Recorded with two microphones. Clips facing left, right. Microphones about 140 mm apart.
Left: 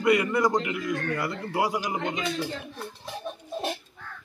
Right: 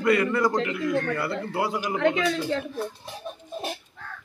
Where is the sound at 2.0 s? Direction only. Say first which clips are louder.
Right 6 dB; 90° right.